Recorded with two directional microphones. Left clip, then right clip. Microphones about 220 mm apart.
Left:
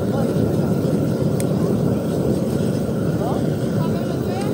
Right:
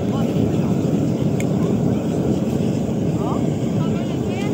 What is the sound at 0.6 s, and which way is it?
Vehicle, 20° left (ahead or behind).